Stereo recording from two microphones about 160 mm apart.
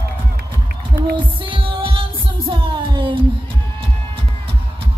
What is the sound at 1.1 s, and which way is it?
Music, 30° right (ahead or behind).